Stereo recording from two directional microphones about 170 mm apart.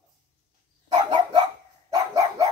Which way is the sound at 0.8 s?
25° right (ahead or behind).